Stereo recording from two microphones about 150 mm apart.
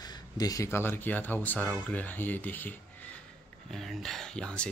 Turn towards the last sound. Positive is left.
turn(degrees=5)  # may be behind; listen again after turning